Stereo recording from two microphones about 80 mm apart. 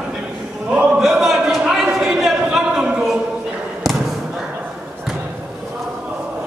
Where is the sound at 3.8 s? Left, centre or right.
Centre.